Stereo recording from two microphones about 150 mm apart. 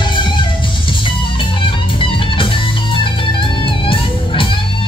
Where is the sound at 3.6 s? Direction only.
35° left (ahead or behind).